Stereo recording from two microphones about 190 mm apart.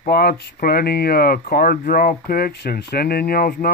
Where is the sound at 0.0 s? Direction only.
55° left (ahead or behind).